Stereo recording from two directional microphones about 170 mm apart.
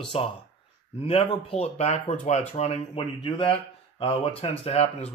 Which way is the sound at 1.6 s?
40° left (ahead or behind).